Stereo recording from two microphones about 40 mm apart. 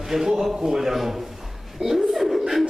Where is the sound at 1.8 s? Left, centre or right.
Centre.